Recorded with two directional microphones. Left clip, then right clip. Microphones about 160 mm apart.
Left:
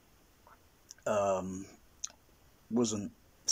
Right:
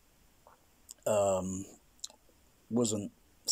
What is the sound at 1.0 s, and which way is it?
Speech, 15° right (ahead or behind).